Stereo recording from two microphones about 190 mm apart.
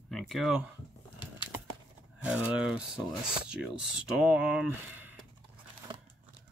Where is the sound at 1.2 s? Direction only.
25° left (ahead or behind).